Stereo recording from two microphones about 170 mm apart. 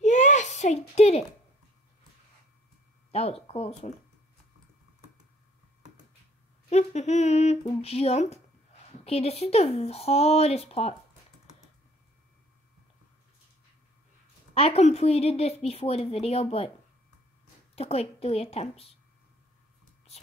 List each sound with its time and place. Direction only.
0.0 s a sound: 45° left (ahead or behind)
3.1 s speech: 35° left (ahead or behind)
6.7 s a woman's voice: 40° left (ahead or behind)
14.5 s a woman's voice: 35° left (ahead or behind)
17.7 s a woman's voice: 35° left (ahead or behind)
20.1 s whispering: 40° left (ahead or behind)